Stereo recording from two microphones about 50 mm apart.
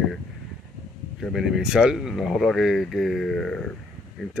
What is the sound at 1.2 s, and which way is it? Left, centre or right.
Speech, centre.